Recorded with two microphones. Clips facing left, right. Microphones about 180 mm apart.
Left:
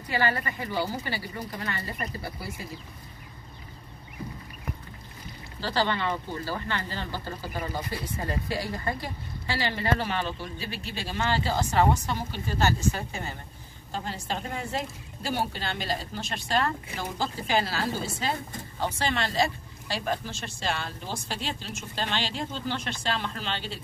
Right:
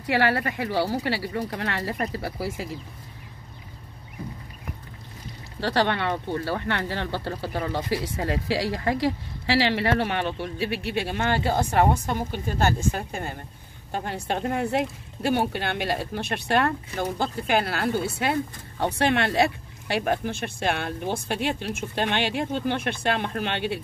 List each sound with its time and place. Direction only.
0.0 s speech: 75° right (ahead or behind); by 2.7 s 90° right
5.6 s speech: 65° right (ahead or behind)